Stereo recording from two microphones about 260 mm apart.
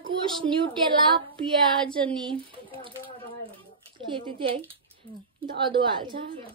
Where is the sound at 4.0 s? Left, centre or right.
Right.